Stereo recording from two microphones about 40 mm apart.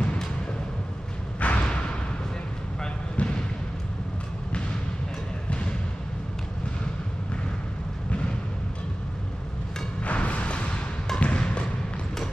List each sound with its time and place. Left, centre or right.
1.4 s a sound: left
3.2 s basketball bounce: left
5.5 s basketball bounce: left
10.0 s music: left